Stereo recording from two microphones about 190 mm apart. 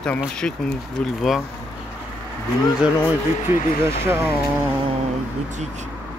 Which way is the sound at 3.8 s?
10° right (ahead or behind).